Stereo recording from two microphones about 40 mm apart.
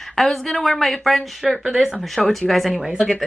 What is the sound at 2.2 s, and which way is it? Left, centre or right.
Speech, centre.